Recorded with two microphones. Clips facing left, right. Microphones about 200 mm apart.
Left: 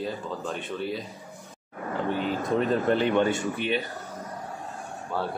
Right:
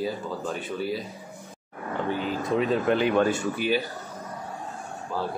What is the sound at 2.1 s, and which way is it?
Speech, centre (ahead or behind).